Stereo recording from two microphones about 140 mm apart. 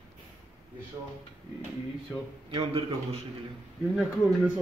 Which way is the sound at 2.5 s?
45° right (ahead or behind).